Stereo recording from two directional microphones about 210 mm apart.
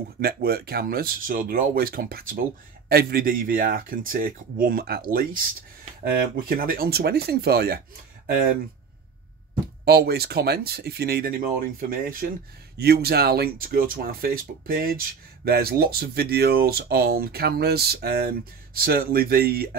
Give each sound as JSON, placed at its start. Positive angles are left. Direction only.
{"t": 0.2, "sound": "speech", "side_deg": -45}
{"t": 6.5, "sound": "speech", "side_deg": -45}
{"t": 9.8, "sound": "speech", "side_deg": -50}